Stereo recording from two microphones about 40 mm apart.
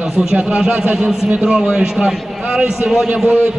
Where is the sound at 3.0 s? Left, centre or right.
Right.